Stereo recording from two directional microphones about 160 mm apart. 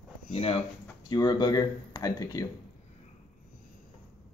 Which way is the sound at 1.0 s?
25° left (ahead or behind).